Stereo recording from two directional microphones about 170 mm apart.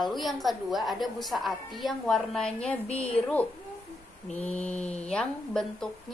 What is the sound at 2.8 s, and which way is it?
Speech, 35° left (ahead or behind).